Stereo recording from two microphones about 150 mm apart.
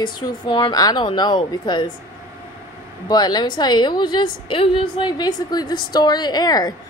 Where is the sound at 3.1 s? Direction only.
25° left (ahead or behind).